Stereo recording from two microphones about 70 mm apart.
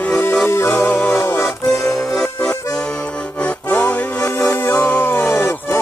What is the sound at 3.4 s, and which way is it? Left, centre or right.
Music, left.